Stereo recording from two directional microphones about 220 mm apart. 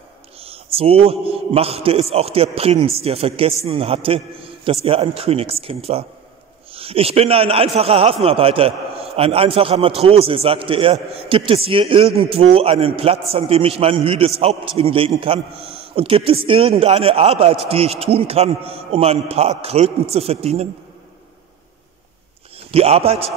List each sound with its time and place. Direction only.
0.4 s a man's voice: 25° right (ahead or behind)
22.7 s a man's voice: 25° right (ahead or behind)